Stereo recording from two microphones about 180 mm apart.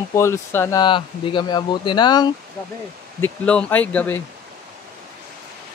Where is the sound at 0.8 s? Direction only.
25° left (ahead or behind).